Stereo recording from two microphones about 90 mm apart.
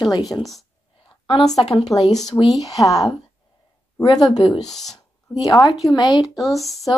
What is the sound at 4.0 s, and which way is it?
Speech, 50° left (ahead or behind).